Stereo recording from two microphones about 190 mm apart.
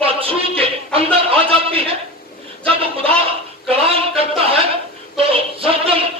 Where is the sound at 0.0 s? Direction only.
30° right (ahead or behind).